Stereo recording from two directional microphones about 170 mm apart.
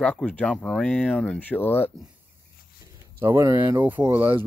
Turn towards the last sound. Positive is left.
turn(degrees=-10)  # may be behind; listen again after turning